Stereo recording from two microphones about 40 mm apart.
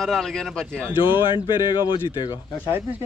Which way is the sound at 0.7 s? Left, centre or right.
Right.